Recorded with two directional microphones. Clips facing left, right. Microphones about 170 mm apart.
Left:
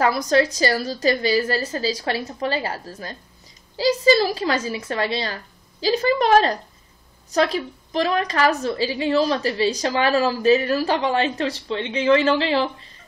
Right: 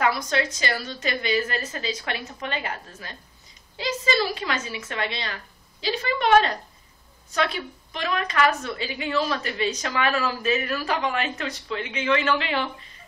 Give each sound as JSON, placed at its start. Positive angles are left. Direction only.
{"t": 0.0, "sound": "a woman's voice", "side_deg": 40}